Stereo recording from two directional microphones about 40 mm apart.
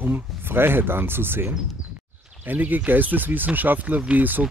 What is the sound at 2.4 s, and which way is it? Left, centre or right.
Speech, right.